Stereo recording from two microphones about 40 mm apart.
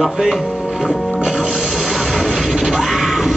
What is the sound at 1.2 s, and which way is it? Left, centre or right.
Music, centre.